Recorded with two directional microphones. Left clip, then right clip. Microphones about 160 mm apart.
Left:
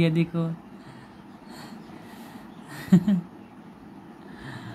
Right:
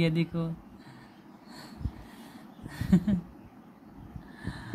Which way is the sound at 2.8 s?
10° right (ahead or behind).